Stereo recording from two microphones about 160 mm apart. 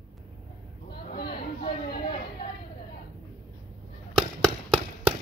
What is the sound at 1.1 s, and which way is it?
Chatter, 80° left.